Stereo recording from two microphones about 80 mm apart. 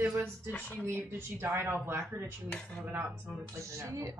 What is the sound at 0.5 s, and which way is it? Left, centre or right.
Speech, centre.